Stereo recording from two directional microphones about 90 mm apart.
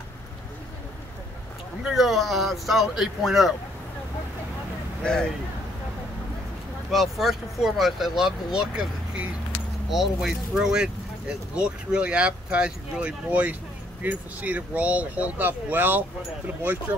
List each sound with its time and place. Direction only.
1.8 s speech: 5° right (ahead or behind)
5.0 s speech: 10° left (ahead or behind)
6.9 s speech: centre (ahead or behind); by 16.1 s 20° right (ahead or behind)